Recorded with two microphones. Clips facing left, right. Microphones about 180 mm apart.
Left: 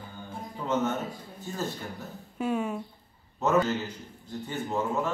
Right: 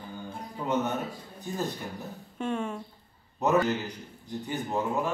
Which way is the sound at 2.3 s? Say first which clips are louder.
Left 2 dB; 5° left (ahead or behind).